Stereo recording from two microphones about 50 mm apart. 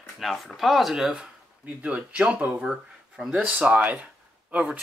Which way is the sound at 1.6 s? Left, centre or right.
Right.